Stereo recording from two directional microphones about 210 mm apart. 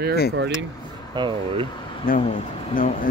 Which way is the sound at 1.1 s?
25° right (ahead or behind).